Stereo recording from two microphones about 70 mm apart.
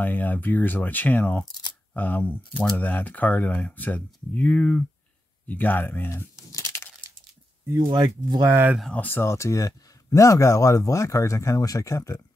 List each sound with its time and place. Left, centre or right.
0.0 s speech: left
6.3 s a sound: left
7.9 s speech: right
8.9 s speech: left
9.2 s speech: left